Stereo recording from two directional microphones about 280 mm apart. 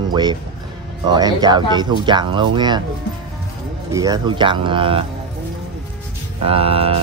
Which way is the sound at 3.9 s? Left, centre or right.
Centre.